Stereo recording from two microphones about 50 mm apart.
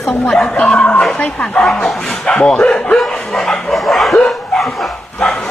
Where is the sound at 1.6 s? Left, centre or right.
Centre.